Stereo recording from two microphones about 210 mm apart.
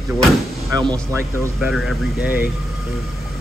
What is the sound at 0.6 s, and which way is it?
Speech, 20° right (ahead or behind).